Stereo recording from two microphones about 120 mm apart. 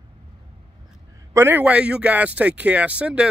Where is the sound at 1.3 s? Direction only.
15° right (ahead or behind).